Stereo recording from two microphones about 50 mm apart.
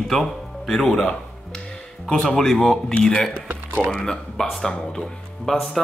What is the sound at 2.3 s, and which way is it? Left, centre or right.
A man's voice, centre.